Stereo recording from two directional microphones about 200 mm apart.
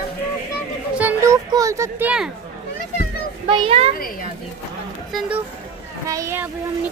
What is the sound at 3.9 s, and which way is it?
Speech, 45° left (ahead or behind).